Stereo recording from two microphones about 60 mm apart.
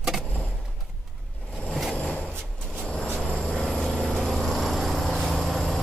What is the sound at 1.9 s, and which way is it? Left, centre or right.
Vehicle, left.